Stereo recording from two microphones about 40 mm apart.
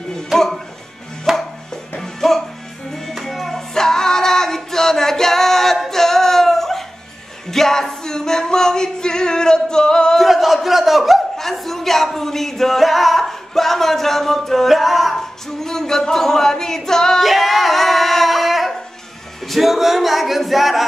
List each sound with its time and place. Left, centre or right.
0.3 s music: centre
1.3 s music: centre
2.0 s music: centre
7.5 s singing: centre
10.1 s a sound: centre
11.3 s speech: centre
15.1 s a capella: centre
17.2 s singing: centre
19.4 s a capella: centre